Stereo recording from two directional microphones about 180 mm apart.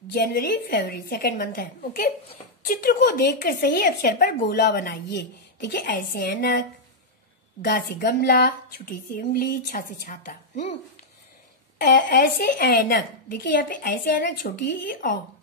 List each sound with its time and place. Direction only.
0.1 s a woman's voice: 60° left (ahead or behind)
5.7 s a woman's voice: 50° left (ahead or behind)
7.6 s a woman's voice: 60° left (ahead or behind); by 10.8 s 45° left (ahead or behind)
12.1 s a woman's voice: 55° left (ahead or behind)